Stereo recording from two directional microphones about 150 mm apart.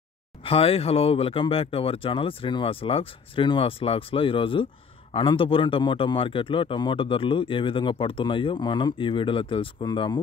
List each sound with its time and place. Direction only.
0.4 s speech: 40° left (ahead or behind)